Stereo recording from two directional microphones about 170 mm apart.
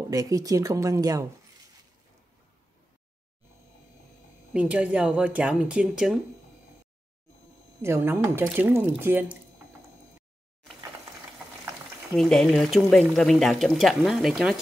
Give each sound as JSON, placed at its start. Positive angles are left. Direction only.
{"t": 0.1, "sound": "a woman's voice", "side_deg": -20}
{"t": 4.6, "sound": "speech", "side_deg": -5}
{"t": 7.8, "sound": "speech", "side_deg": -15}
{"t": 12.2, "sound": "speech", "side_deg": 5}